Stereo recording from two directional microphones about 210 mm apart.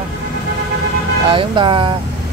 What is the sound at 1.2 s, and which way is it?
Speech, 25° right (ahead or behind).